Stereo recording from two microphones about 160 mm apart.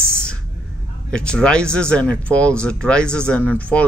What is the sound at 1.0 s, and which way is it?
Speech, 5° left (ahead or behind).